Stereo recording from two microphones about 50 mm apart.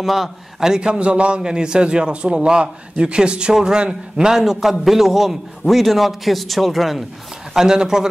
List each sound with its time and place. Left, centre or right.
0.0 s a man's voice: centre
4.4 s a man's voice: centre
7.5 s a man's voice: centre